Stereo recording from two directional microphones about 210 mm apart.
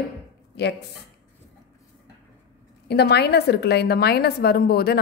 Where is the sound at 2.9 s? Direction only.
50° left (ahead or behind).